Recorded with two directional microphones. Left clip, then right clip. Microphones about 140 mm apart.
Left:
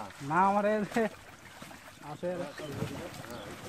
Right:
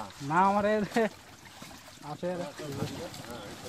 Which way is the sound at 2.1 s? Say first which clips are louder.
Right 1 dB; 65° right (ahead or behind).